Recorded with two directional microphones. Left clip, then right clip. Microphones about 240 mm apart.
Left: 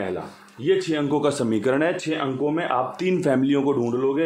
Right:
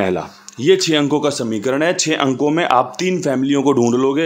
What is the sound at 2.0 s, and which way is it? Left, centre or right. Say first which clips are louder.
Speech: right 8 dB; right.